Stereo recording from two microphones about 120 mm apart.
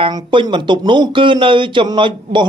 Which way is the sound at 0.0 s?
45° right (ahead or behind).